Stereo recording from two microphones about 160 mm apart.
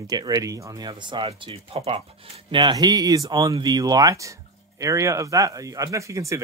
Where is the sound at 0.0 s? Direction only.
25° right (ahead or behind).